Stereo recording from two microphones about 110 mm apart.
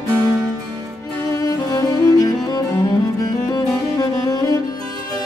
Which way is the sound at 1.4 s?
35° left (ahead or behind).